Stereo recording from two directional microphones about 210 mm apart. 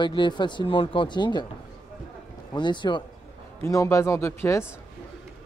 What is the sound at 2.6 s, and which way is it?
A man's voice, 20° left (ahead or behind).